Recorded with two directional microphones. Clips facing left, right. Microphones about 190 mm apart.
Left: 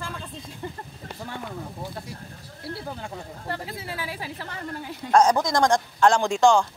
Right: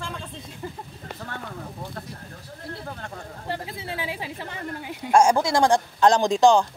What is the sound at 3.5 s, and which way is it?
A man's voice, 25° right (ahead or behind).